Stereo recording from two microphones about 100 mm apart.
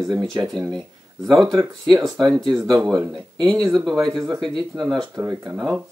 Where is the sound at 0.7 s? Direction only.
Centre (ahead or behind).